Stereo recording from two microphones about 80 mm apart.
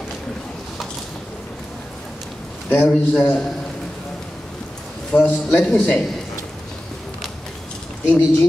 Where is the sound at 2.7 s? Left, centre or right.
Centre.